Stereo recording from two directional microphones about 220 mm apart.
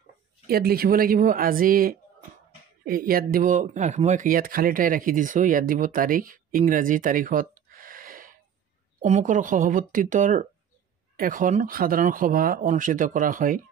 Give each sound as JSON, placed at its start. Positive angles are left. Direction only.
{"t": 0.5, "sound": "speech", "side_deg": -45}